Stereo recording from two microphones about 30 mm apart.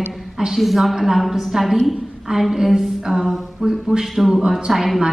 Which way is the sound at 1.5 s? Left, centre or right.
Centre.